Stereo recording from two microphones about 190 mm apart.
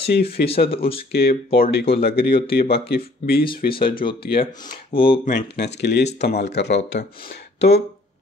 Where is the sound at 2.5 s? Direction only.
55° left (ahead or behind).